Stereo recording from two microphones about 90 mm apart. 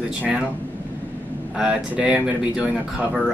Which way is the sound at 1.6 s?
10° right (ahead or behind).